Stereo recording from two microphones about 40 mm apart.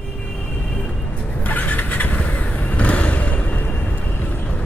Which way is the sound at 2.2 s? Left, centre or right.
Left.